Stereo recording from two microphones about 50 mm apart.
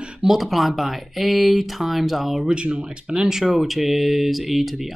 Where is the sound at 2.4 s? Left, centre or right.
Right.